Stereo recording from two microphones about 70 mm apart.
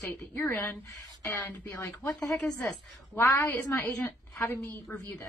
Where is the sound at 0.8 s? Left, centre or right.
Left.